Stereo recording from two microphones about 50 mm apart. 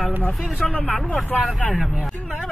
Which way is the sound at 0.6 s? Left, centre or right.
Left.